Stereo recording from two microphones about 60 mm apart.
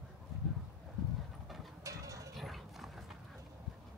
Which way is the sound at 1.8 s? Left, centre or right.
Right.